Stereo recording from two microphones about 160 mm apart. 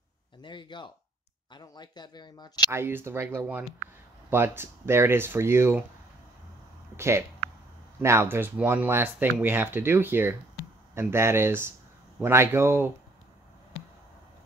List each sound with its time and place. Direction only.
0.4 s speech: 30° left (ahead or behind)
2.7 s speech: 15° right (ahead or behind)
7.0 s speech: 15° right (ahead or behind)